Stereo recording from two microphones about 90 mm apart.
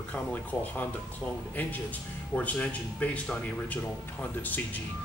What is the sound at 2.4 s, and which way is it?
Speech, 15° left (ahead or behind).